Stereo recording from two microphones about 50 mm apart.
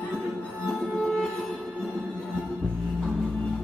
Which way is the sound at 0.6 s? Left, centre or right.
Centre.